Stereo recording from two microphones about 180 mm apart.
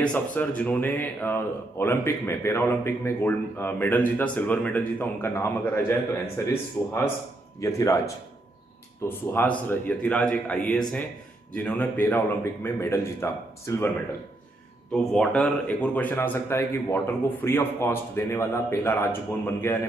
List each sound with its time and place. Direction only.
0.0 s speech: 5° left (ahead or behind)
15.1 s speech: 5° left (ahead or behind)